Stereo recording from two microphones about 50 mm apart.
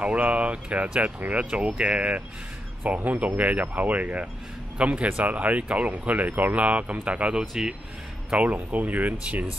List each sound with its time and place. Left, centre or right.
0.0 s speech: right
2.8 s speech: right